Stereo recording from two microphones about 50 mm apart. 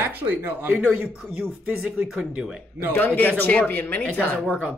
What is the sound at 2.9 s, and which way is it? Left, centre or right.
Speech, left.